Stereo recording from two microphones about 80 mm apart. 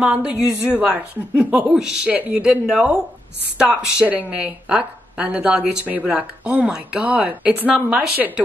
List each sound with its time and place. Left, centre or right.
0.0 s speech: centre
3.5 s speech: centre